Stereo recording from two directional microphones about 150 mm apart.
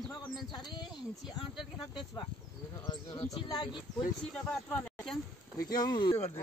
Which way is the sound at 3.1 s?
40° left (ahead or behind).